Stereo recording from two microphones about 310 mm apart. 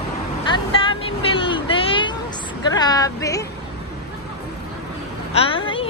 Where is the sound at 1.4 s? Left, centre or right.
Centre.